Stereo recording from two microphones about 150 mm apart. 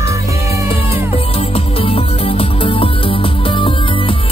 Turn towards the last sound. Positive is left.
turn(degrees=35)  # may be behind; listen again after turning